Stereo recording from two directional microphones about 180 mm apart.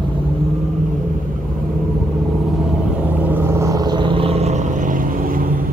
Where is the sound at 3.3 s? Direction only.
15° right (ahead or behind); by 5.4 s 50° right (ahead or behind).